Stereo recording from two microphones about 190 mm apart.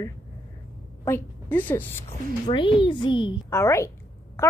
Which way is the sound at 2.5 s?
25° left (ahead or behind).